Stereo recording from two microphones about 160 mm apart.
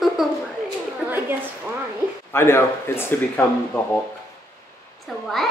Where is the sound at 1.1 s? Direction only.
15° right (ahead or behind).